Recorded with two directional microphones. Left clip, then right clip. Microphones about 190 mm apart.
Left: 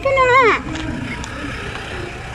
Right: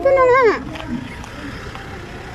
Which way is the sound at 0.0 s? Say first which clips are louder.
Even; 25° right (ahead or behind).